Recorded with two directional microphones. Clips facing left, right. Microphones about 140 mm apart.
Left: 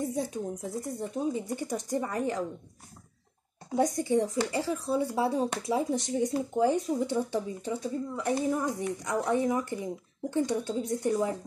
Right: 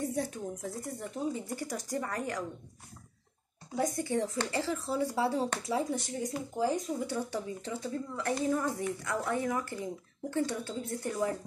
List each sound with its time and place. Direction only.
0.0 s speech: 15° left (ahead or behind)
3.7 s speech: 20° left (ahead or behind)